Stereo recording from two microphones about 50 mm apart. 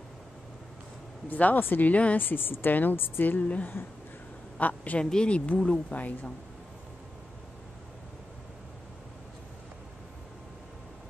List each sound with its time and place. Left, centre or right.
1.3 s speech: left
1.9 s speech: left
2.1 s a woman's voice: left
3.3 s a woman's voice: left
5.1 s speech: left
5.9 s speech: left